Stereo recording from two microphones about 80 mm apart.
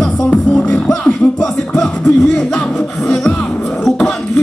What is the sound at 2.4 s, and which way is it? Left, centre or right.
Music, centre.